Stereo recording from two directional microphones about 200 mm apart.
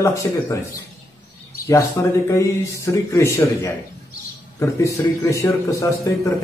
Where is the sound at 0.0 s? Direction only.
15° left (ahead or behind).